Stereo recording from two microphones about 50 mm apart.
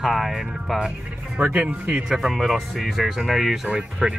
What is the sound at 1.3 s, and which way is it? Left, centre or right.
Speech, right.